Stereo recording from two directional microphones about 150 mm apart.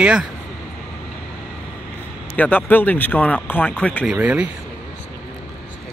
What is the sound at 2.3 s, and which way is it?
Speech, 10° left (ahead or behind).